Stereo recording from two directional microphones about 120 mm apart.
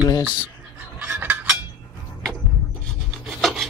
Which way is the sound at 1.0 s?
15° right (ahead or behind).